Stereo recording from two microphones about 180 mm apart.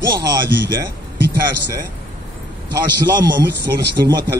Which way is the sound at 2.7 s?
25° right (ahead or behind).